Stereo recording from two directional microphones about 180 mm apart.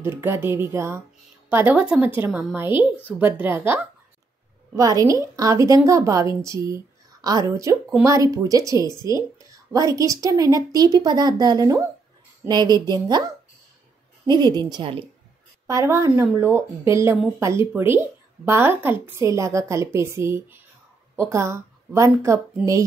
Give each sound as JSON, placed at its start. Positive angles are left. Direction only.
{"t": 0.0, "sound": "speech", "side_deg": -15}
{"t": 14.2, "sound": "speech", "side_deg": -25}